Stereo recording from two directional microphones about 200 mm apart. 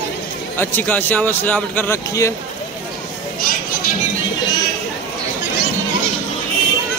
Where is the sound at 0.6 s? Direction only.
10° left (ahead or behind).